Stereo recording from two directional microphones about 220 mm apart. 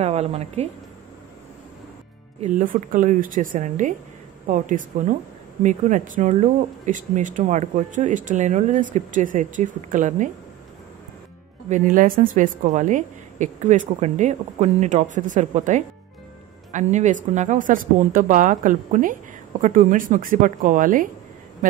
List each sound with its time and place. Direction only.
0.0 s a woman's voice: 30° right (ahead or behind)
2.4 s speech: 35° right (ahead or behind)
11.7 s speech: 35° right (ahead or behind)